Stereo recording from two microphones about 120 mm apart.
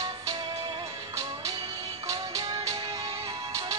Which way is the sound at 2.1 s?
30° right (ahead or behind).